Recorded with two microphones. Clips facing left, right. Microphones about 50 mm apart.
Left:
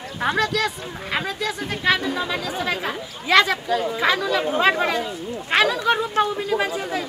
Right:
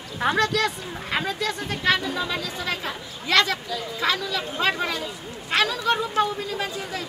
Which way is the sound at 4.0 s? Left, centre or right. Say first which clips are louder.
Left 2 dB; left.